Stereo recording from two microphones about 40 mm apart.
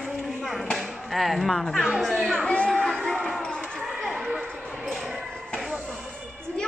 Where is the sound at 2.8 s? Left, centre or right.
Centre.